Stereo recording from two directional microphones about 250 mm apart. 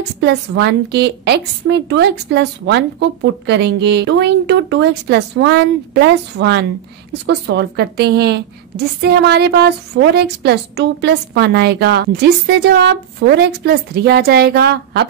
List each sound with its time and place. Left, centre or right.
0.2 s a woman's voice: right